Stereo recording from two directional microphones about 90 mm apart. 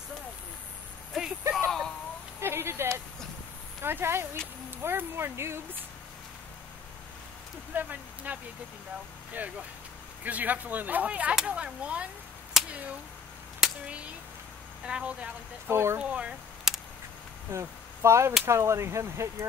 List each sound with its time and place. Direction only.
1.5 s a sound: 5° left (ahead or behind)
2.4 s speech: 30° right (ahead or behind)
7.7 s speech: 20° right (ahead or behind)
12.6 s finger snapping: 5° right (ahead or behind)
13.8 s speech: 15° right (ahead or behind)
15.6 s speech: 30° right (ahead or behind)
16.0 s a sound: 10° right (ahead or behind)
17.5 s whip: 30° right (ahead or behind)
18.4 s speech: 30° right (ahead or behind)